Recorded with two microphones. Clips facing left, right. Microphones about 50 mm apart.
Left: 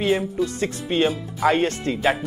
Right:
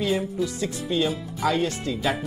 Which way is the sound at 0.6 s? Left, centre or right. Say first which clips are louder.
Left 4 dB; left.